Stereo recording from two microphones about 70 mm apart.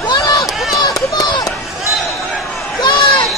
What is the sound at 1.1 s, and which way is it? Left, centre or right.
Run, left.